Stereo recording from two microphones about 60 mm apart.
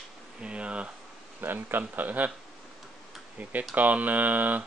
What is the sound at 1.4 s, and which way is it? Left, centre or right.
Speech, right.